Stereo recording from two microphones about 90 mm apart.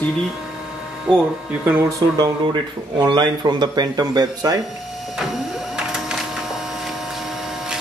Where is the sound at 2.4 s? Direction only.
55° right (ahead or behind).